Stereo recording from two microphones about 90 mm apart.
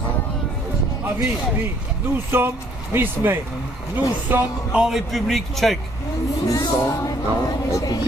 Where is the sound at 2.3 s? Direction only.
25° right (ahead or behind).